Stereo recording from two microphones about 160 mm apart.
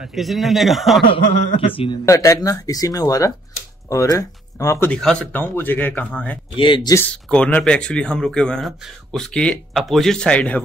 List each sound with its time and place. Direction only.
0.0 s speech: centre (ahead or behind)
1.0 s a man's voice: 35° left (ahead or behind)
2.0 s speech: 20° left (ahead or behind)
4.9 s speech: 5° left (ahead or behind)
6.5 s speech: 30° left (ahead or behind)
7.0 s speech: 5° left (ahead or behind)